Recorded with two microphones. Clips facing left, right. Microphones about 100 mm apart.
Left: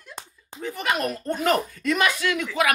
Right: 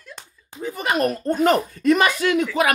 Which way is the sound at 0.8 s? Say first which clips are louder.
Right 5 dB; 40° right (ahead or behind).